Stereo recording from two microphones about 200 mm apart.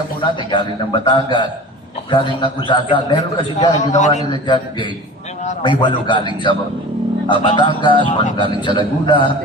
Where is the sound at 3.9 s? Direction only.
35° left (ahead or behind).